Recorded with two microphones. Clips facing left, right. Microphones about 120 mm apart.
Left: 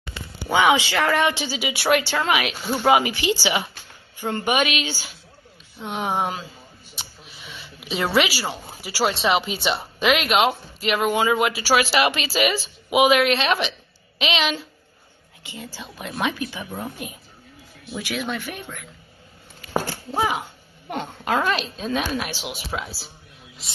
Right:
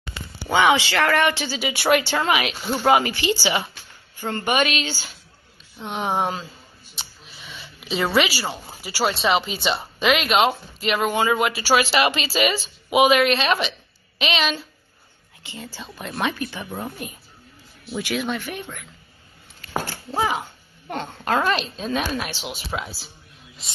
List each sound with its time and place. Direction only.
0.5 s a woman's voice: 10° left (ahead or behind)
7.0 s a sound: 5° left (ahead or behind)
8.5 s a woman's voice: 5° left (ahead or behind)
20.1 s a woman's voice: 10° left (ahead or behind)